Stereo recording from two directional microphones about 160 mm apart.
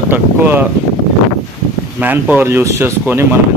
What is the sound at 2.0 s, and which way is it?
Speech, 10° right (ahead or behind).